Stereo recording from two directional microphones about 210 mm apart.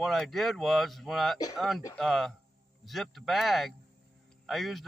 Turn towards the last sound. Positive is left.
turn(degrees=0)  # may be behind; listen again after turning